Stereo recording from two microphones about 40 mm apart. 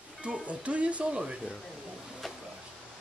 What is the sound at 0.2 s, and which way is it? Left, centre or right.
Speech, right.